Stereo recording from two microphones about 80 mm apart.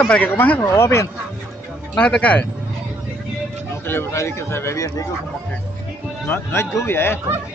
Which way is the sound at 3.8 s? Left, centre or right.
Left.